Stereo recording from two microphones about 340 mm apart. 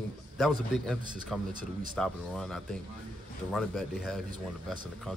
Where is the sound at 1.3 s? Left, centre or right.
Centre.